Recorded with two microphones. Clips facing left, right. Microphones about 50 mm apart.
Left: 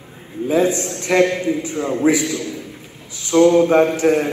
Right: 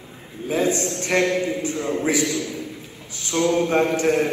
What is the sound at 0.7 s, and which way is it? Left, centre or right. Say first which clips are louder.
Speech: left 2 dB; right.